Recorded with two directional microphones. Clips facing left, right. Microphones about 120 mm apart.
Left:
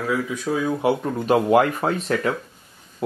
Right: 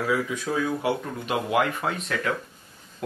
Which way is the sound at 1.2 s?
40° left (ahead or behind).